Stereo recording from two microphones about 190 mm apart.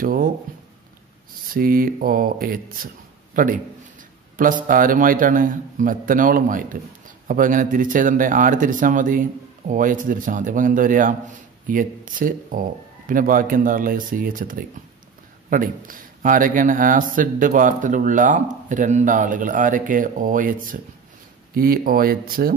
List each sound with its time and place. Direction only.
0.0 s speech: 45° right (ahead or behind)
1.5 s speech: 50° right (ahead or behind)